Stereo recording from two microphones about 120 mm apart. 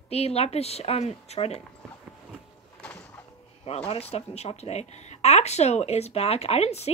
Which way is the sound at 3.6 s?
60° left (ahead or behind).